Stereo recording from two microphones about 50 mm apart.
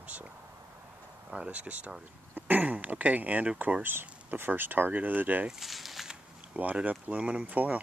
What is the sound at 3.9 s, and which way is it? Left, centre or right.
Speech, right.